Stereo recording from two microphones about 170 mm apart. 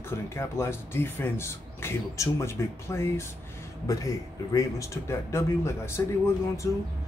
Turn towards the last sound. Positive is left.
turn(degrees=15)  # may be behind; listen again after turning